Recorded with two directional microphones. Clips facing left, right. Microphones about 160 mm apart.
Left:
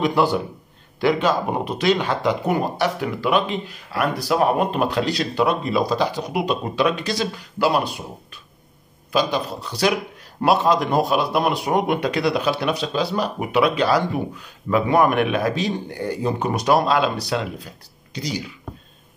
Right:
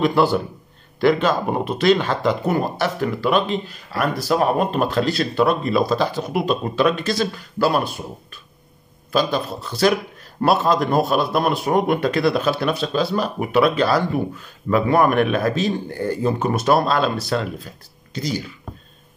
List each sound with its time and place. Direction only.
0.0 s a man's voice: 15° left (ahead or behind)